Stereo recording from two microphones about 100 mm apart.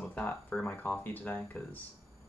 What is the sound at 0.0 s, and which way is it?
Speech, 20° left (ahead or behind).